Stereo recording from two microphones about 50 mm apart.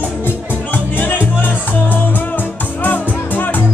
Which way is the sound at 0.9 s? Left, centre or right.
Left.